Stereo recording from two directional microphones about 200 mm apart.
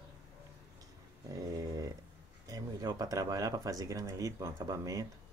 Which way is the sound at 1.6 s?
20° right (ahead or behind).